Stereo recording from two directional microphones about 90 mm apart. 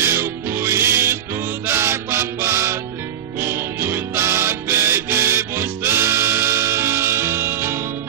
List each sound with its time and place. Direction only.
0.0 s music: 25° right (ahead or behind)